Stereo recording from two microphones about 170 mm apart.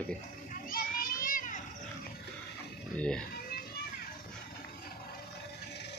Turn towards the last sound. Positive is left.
turn(degrees=80)